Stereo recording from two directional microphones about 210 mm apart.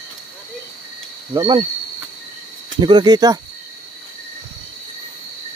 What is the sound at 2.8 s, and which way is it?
Speech, 20° right (ahead or behind).